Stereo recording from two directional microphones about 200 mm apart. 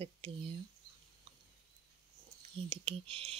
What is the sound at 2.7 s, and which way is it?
Speech, 30° right (ahead or behind).